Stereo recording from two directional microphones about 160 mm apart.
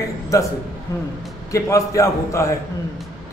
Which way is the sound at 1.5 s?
20° left (ahead or behind).